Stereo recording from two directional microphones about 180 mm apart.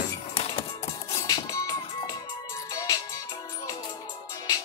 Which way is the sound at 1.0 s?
20° left (ahead or behind).